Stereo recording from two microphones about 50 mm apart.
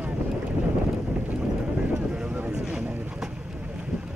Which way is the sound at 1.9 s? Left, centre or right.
Right.